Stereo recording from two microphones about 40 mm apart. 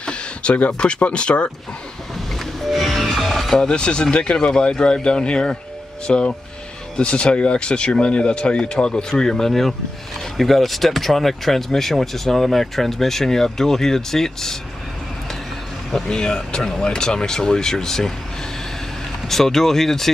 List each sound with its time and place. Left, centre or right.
0.0 s a sound: left
1.0 s speech: left
2.3 s music: centre
3.6 s speech: left
16.1 s speech: centre
19.2 s speech: centre